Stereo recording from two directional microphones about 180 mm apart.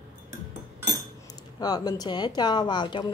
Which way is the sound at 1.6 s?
20° left (ahead or behind).